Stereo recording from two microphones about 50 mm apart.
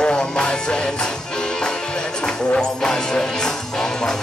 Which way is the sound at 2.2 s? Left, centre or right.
Centre.